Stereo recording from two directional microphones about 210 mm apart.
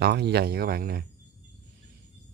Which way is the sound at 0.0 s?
50° right (ahead or behind).